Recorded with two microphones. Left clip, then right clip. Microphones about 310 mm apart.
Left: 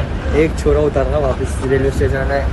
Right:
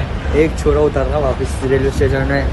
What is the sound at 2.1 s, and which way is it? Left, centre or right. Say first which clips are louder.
Speech: even; right.